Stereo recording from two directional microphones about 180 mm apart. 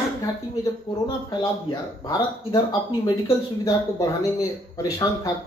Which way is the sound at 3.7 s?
20° left (ahead or behind).